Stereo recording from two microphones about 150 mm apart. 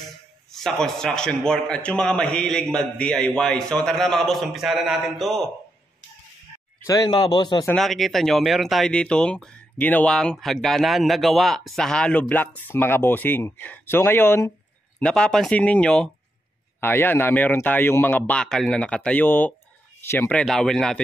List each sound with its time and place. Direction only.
0.5 s speech: 5° left (ahead or behind)
6.9 s speech: 25° left (ahead or behind)
7.7 s a man's voice: centre (ahead or behind)